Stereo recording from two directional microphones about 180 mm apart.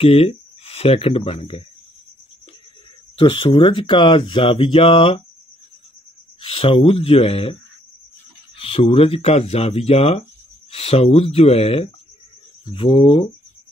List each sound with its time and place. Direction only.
0.0 s speech: 30° left (ahead or behind)
3.2 s speech: 30° left (ahead or behind)
6.4 s speech: 30° left (ahead or behind)
8.5 s speech: 30° left (ahead or behind)